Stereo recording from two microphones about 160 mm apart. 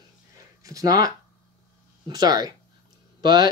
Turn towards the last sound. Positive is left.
turn(degrees=-25)  # may be behind; listen again after turning